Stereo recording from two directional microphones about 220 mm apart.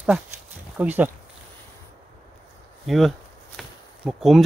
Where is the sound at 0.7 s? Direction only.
10° right (ahead or behind).